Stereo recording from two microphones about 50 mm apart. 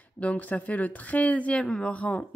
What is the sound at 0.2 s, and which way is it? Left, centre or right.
A woman's voice, left.